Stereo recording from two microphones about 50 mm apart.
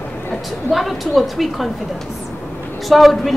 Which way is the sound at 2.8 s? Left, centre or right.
Centre.